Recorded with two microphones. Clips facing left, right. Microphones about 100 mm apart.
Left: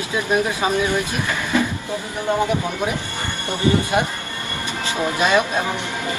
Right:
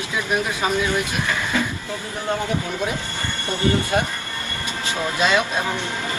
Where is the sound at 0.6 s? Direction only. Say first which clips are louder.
Left 2 dB; 20° left (ahead or behind).